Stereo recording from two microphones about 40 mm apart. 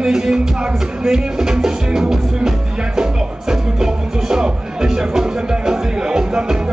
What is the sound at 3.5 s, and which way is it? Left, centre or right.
Music, centre.